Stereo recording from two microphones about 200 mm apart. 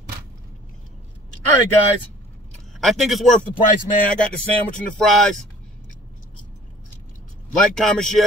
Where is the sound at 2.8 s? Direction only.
Centre (ahead or behind).